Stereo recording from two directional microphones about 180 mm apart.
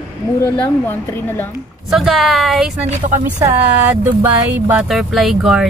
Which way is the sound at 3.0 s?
45° right (ahead or behind).